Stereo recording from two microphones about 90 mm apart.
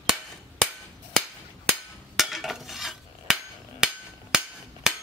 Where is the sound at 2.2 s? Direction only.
Centre (ahead or behind).